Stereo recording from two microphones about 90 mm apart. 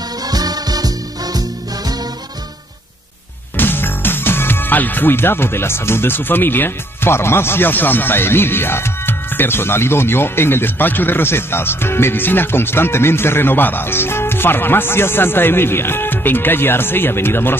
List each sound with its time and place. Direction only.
0.3 s music: 45° right (ahead or behind)
3.5 s speech: 25° left (ahead or behind)